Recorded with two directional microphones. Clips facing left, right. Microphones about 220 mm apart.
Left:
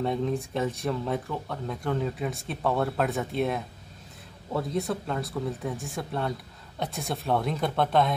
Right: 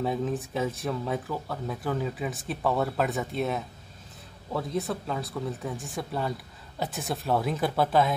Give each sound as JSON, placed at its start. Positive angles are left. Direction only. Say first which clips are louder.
{"t": 0.0, "sound": "speech", "louder": "left 1 dB", "side_deg": -5}